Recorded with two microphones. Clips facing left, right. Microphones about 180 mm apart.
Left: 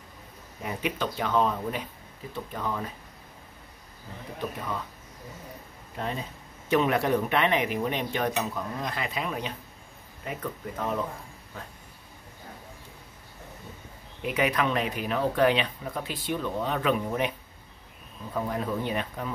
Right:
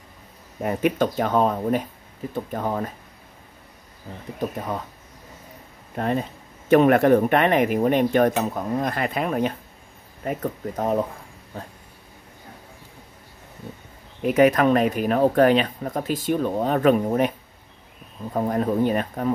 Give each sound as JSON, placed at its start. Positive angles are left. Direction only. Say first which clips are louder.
{"t": 0.6, "sound": "speech", "louder": "right 9 dB", "side_deg": -50}
{"t": 4.4, "sound": "speech", "louder": "right 6 dB", "side_deg": -45}
{"t": 5.9, "sound": "speech", "louder": "right 9 dB", "side_deg": -55}
{"t": 14.2, "sound": "speech", "louder": "right 9 dB", "side_deg": -45}
{"t": 18.3, "sound": "speech", "louder": "right 7 dB", "side_deg": -45}